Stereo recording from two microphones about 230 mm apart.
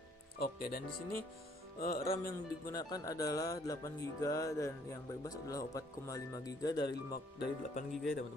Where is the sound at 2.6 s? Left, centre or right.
Centre.